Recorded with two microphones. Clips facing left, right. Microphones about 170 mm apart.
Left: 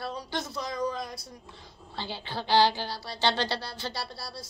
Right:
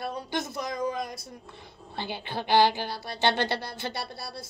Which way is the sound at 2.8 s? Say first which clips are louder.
Right 2 dB; 55° right (ahead or behind).